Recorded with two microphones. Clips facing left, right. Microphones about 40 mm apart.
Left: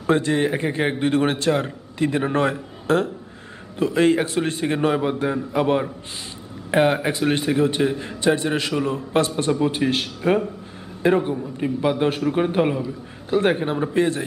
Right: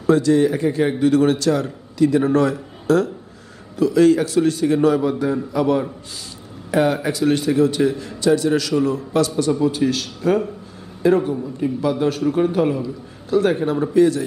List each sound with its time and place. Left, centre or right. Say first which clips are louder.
0.0 s a man's voice: right 4 dB; left